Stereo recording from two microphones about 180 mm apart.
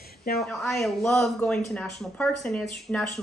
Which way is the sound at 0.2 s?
60° left (ahead or behind).